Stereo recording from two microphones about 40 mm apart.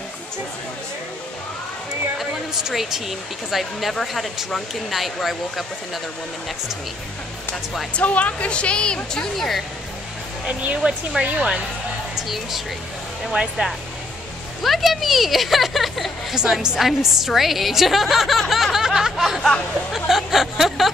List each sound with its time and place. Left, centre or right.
2.5 s a woman's voice: centre
7.9 s speech: left
10.7 s speech: right
12.2 s a woman's voice: centre
16.3 s a woman's voice: centre